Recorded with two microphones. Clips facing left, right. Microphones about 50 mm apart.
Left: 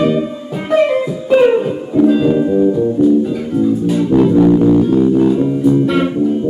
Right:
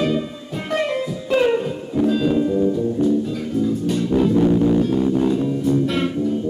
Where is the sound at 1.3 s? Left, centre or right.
Centre.